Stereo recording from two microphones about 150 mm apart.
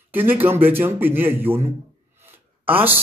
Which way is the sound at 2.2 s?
15° right (ahead or behind).